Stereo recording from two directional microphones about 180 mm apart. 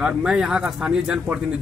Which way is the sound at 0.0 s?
5° right (ahead or behind).